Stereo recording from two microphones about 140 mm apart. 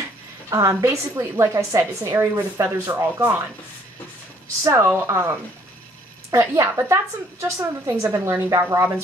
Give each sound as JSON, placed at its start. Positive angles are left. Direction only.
{"t": 0.5, "sound": "a woman's voice", "side_deg": -25}
{"t": 4.6, "sound": "a woman's voice", "side_deg": -20}